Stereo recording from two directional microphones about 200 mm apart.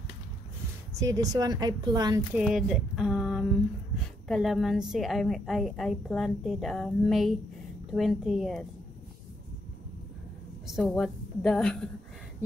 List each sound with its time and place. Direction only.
0.9 s a woman's voice: 15° right (ahead or behind)
2.3 s a woman's voice: 5° right (ahead or behind)
10.7 s a woman's voice: centre (ahead or behind)